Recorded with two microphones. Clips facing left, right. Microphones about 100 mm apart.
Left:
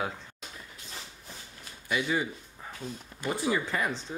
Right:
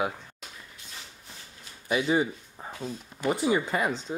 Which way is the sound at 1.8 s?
25° right (ahead or behind).